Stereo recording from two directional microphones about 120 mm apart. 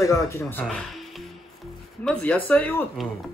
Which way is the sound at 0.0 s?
25° left (ahead or behind).